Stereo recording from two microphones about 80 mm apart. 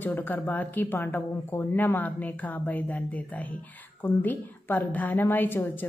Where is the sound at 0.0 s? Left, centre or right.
Left.